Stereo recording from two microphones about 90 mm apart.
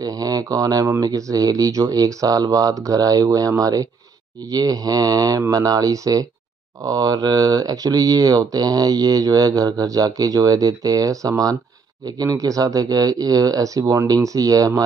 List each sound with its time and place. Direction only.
0.0 s speech: 40° right (ahead or behind)